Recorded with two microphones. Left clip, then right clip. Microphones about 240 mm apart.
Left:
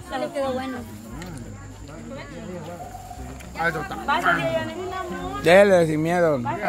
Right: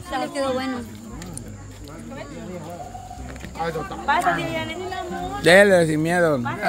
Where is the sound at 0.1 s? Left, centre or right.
Right.